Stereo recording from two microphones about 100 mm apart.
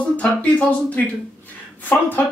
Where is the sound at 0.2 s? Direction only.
15° left (ahead or behind).